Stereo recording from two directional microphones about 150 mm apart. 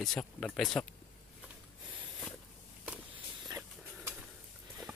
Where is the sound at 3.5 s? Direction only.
15° right (ahead or behind).